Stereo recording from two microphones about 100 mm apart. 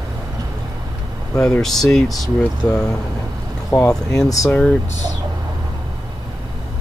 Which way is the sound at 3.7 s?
35° left (ahead or behind).